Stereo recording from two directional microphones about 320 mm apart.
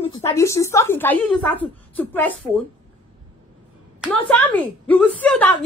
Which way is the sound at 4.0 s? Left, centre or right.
Centre.